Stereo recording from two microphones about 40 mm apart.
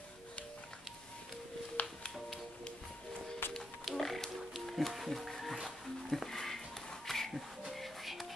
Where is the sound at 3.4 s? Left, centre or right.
Left.